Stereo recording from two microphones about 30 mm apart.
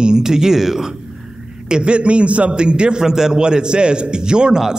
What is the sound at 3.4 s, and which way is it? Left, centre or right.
A man's voice, right.